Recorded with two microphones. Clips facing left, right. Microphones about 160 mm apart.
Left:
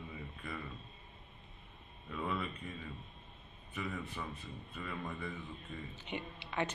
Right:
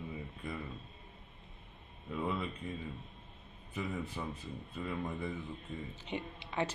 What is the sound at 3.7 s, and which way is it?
Speech, 25° right (ahead or behind).